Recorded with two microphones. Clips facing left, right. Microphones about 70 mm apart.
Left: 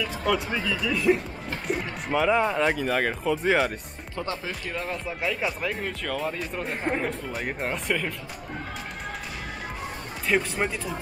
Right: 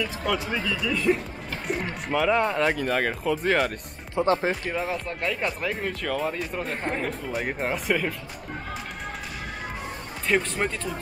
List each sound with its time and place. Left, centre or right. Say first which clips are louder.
0.0 s speech: left 1 dB; centre
4.3 s speech: right 11 dB; right
4.6 s speech: right 3 dB; centre
10.2 s speech: even; centre